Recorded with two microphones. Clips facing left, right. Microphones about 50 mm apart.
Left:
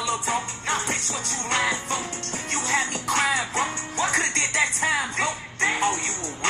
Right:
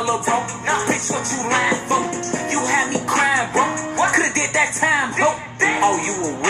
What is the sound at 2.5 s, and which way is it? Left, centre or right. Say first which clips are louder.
Music: right 6 dB; centre.